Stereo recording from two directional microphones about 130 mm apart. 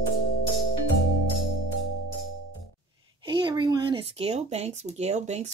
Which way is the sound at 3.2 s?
35° right (ahead or behind).